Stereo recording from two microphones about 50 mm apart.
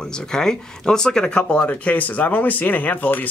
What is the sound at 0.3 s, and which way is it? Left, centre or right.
Speech, centre.